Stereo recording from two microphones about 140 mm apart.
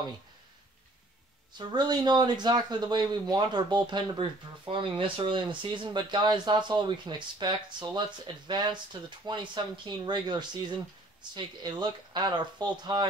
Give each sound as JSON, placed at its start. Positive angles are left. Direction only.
{"t": 1.7, "sound": "speech", "side_deg": -30}